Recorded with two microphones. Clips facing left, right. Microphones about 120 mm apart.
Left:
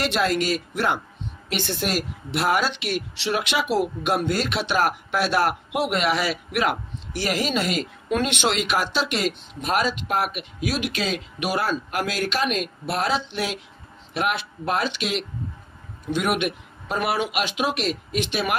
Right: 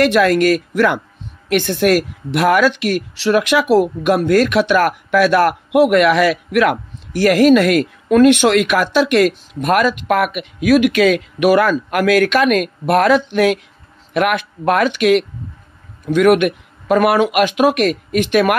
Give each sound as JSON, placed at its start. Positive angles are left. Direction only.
{"t": 0.0, "sound": "a woman's voice", "side_deg": -55}